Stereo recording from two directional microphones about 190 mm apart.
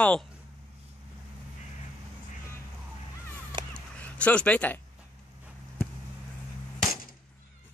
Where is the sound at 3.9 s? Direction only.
5° left (ahead or behind).